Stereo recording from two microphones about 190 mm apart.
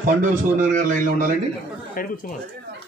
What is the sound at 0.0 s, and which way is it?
A man's voice, 45° right (ahead or behind).